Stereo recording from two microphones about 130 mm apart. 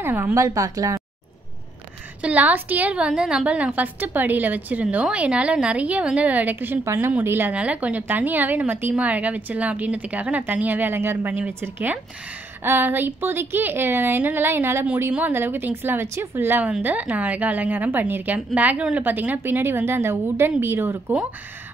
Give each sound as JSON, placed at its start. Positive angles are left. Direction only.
{"t": 0.0, "sound": "speech", "side_deg": -15}
{"t": 2.2, "sound": "a woman's voice", "side_deg": -10}